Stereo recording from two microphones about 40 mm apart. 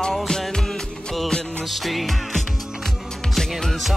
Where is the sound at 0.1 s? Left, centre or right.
Centre.